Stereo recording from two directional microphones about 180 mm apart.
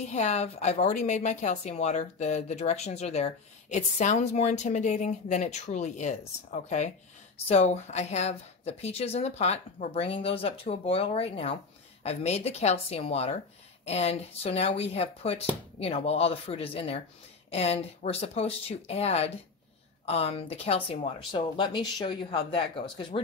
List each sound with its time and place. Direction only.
0.1 s a woman's voice: 40° left (ahead or behind)